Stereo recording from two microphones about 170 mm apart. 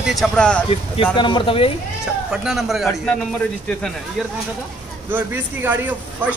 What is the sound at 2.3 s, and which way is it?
Speech, 5° right (ahead or behind).